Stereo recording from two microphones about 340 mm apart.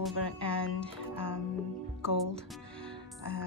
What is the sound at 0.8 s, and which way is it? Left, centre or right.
Speech, centre.